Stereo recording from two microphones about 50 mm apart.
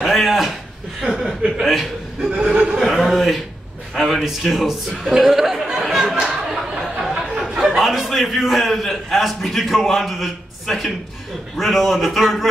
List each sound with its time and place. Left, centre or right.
0.0 s a sound: centre
1.6 s a man's voice: centre
2.2 s speech: centre
2.8 s a man's voice: centre